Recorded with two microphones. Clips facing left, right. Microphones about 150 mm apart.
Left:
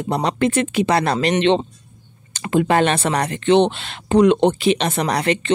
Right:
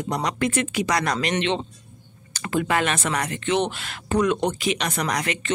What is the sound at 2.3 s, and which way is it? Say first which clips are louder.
Speech: left 6 dB; 25° left (ahead or behind).